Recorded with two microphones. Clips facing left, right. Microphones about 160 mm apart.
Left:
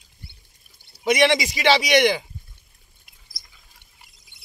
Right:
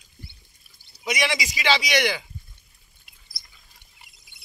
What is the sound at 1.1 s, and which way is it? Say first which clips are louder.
Speech: left 8 dB; 60° left (ahead or behind).